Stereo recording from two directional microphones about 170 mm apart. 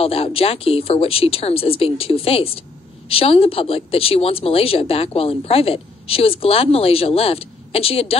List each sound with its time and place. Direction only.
0.0 s speech: 35° left (ahead or behind)